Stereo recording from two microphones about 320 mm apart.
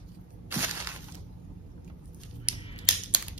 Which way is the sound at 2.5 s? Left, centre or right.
Centre.